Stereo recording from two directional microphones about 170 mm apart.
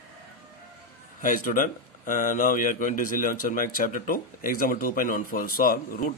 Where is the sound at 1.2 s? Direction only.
50° left (ahead or behind).